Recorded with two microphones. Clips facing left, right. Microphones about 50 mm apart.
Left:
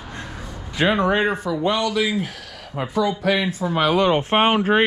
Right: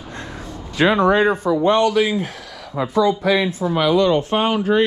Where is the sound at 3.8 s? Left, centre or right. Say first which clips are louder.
Right 2 dB; left.